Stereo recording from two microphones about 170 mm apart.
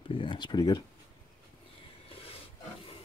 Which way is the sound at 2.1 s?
35° left (ahead or behind).